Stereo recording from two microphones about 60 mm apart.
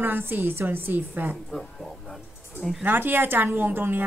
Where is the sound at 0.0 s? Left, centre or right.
Right.